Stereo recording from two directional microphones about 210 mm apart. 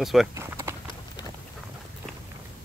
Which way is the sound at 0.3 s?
15° right (ahead or behind).